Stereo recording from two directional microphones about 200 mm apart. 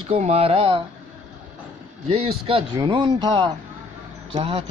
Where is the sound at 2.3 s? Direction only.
25° right (ahead or behind).